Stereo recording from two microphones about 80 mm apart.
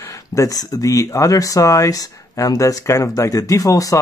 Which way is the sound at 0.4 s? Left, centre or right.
Left.